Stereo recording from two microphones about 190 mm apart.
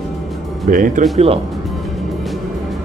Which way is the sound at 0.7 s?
45° right (ahead or behind).